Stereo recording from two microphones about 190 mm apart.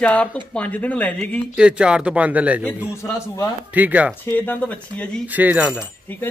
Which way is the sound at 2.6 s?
10° left (ahead or behind).